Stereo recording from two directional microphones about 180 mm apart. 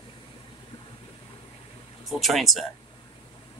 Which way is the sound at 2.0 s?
Centre (ahead or behind).